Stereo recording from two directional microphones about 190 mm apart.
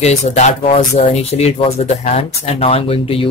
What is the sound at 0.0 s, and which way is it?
Speech, 35° left (ahead or behind).